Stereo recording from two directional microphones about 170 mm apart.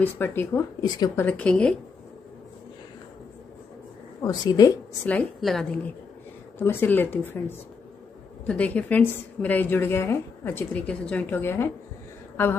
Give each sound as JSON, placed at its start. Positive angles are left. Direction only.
{"t": 0.0, "sound": "a woman's voice", "side_deg": 10}
{"t": 1.2, "sound": "a woman's voice", "side_deg": 5}
{"t": 4.2, "sound": "a woman's voice", "side_deg": 20}
{"t": 5.0, "sound": "a woman's voice", "side_deg": 5}